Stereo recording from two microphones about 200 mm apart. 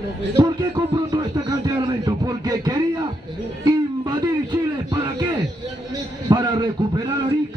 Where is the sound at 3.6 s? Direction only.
20° right (ahead or behind).